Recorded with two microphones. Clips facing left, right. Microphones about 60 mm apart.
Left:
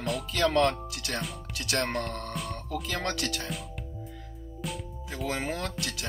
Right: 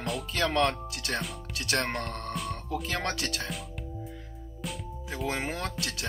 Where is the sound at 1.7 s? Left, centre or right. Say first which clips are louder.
Left 1 dB; centre.